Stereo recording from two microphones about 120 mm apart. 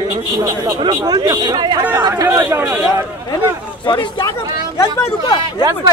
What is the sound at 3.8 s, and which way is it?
Speech, 40° left (ahead or behind).